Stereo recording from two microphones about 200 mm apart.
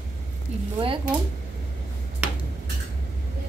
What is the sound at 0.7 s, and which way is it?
Speech, 25° right (ahead or behind).